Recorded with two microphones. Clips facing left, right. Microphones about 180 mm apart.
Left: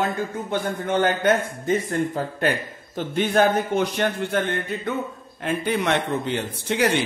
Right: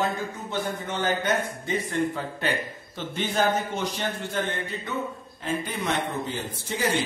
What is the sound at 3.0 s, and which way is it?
A man's voice, 55° left (ahead or behind).